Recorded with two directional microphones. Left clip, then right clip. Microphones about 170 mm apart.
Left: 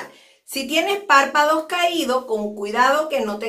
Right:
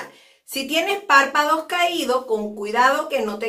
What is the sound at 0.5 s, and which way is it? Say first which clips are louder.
A woman's voice: left 1 dB; 5° right (ahead or behind).